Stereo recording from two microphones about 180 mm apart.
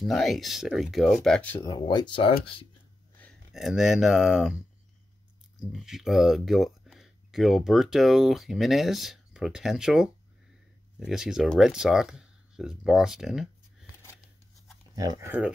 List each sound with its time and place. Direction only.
0.0 s speech: centre (ahead or behind)
1.6 s speech: 20° left (ahead or behind)
3.2 s speech: centre (ahead or behind)
5.7 s speech: centre (ahead or behind)
15.0 s speech: 20° right (ahead or behind)